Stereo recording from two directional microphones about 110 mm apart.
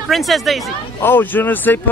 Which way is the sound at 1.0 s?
20° left (ahead or behind).